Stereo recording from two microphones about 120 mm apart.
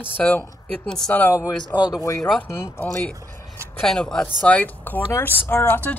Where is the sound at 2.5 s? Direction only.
20° left (ahead or behind).